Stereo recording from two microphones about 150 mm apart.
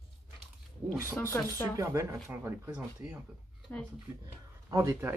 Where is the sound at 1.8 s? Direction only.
20° right (ahead or behind).